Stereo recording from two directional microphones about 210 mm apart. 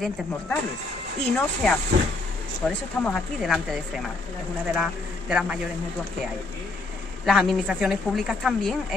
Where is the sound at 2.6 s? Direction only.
Centre (ahead or behind).